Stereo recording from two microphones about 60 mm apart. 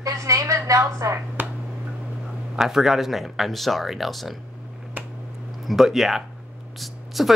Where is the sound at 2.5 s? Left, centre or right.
Centre.